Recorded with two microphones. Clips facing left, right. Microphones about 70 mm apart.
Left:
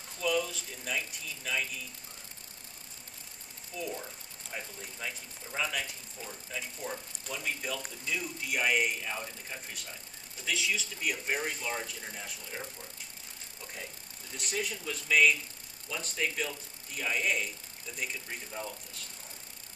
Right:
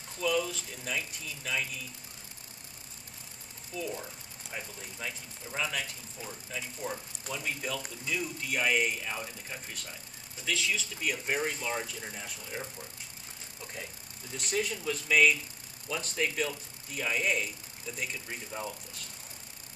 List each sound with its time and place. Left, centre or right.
0.2 s speech: centre
3.7 s speech: centre
6.8 s speech: centre
7.3 s speech: centre
14.3 s speech: centre
18.5 s speech: centre